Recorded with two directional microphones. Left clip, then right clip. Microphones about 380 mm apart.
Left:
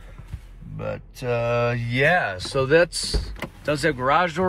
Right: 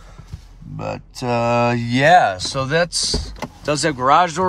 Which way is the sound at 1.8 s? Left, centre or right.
Centre.